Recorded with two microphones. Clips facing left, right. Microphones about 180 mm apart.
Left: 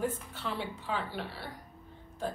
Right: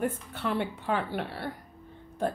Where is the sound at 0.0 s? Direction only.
55° right (ahead or behind).